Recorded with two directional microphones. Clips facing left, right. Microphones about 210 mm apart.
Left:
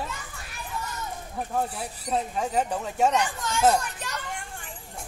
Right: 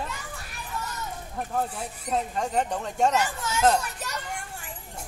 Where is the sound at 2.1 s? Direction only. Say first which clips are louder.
Even; 5° left (ahead or behind).